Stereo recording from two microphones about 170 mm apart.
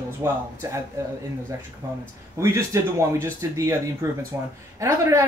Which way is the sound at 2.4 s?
15° right (ahead or behind).